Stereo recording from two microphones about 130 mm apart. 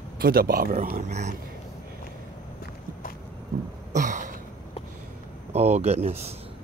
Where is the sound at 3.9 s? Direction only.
70° right (ahead or behind).